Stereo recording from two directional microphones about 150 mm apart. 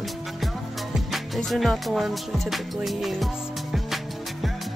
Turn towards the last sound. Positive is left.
turn(degrees=0)  # may be behind; listen again after turning